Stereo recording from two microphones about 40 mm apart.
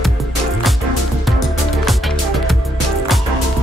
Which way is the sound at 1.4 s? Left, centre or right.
Centre.